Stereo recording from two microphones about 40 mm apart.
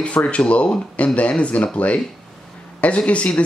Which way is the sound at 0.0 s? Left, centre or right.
Left.